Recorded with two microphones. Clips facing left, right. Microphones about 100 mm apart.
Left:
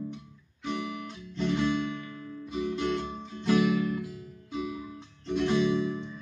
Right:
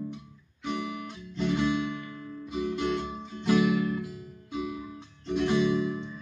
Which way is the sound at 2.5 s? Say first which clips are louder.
Right 1 dB; 5° right (ahead or behind).